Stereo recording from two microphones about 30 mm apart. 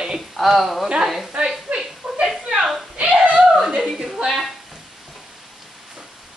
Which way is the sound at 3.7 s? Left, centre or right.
Right.